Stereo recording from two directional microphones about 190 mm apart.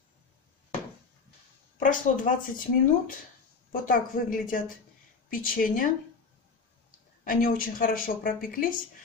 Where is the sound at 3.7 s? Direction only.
45° left (ahead or behind).